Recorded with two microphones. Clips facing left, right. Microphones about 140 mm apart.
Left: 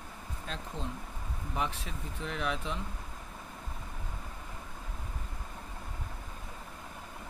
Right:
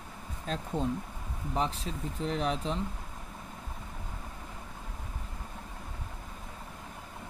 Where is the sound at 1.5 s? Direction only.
30° right (ahead or behind).